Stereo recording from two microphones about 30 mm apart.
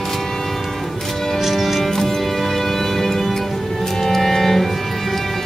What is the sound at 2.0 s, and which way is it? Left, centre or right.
Music, centre.